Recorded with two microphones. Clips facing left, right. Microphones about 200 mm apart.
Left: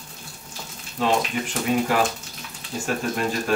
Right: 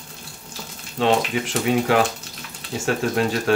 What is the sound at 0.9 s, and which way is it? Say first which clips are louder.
Speech: right 3 dB; 70° right (ahead or behind).